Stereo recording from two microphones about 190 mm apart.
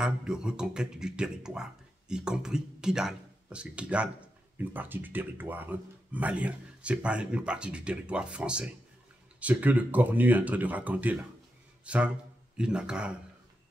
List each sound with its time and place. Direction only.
0.0 s speech: 5° right (ahead or behind)